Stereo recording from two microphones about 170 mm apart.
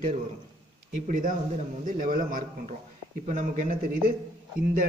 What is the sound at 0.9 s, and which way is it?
A man's voice, 50° right (ahead or behind).